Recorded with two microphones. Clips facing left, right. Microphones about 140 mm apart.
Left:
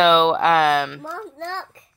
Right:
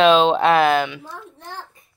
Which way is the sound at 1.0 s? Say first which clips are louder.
Left 7 dB; 90° left.